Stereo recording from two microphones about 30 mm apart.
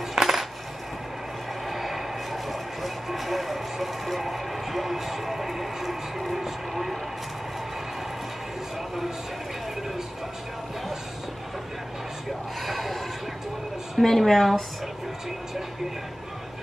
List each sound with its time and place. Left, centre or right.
0.1 s coin: centre
1.7 s vehicle: centre
12.6 s a woman's voice: centre